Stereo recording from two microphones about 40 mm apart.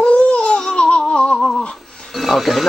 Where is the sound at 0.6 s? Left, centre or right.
Left.